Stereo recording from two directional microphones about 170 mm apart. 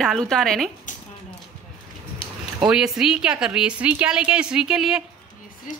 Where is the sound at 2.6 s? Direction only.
5° right (ahead or behind).